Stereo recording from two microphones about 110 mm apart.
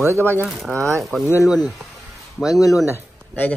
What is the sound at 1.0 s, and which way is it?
Speech, centre (ahead or behind).